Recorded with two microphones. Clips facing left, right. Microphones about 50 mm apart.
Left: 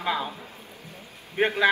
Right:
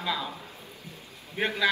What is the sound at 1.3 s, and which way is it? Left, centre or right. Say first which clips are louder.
Speech: left 5 dB; left.